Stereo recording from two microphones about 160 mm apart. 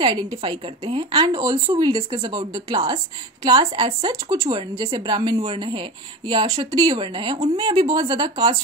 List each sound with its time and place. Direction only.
0.0 s a woman's voice: 25° right (ahead or behind)